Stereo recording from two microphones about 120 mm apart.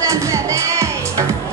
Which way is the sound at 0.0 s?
25° right (ahead or behind).